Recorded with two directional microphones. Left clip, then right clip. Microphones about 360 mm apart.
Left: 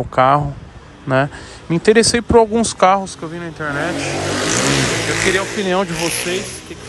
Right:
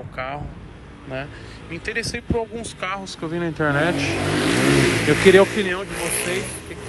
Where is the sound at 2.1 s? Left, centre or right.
Left.